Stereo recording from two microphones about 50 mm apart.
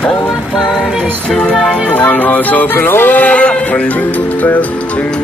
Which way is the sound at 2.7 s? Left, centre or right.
Left.